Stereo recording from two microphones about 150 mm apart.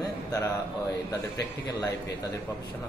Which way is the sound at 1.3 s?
25° left (ahead or behind).